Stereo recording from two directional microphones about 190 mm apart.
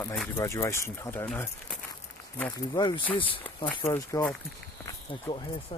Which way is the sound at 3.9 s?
15° left (ahead or behind).